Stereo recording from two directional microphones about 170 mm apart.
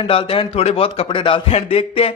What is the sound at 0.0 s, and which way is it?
A man's voice, 30° left (ahead or behind).